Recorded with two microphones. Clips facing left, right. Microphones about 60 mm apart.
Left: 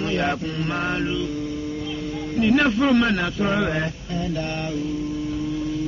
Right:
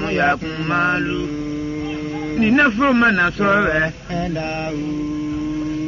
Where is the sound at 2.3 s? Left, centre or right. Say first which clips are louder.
Right 4 dB; right.